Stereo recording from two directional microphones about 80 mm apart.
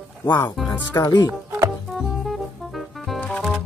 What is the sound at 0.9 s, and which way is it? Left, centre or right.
Speech, left.